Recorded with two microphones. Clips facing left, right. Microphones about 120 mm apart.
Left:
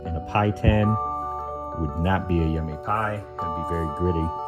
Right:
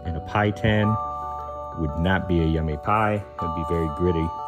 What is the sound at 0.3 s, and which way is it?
Speech, 90° right.